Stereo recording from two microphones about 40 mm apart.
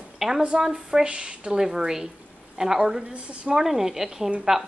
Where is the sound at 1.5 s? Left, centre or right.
Centre.